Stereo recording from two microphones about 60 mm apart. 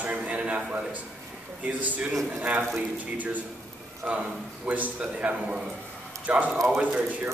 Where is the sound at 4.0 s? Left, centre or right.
Right.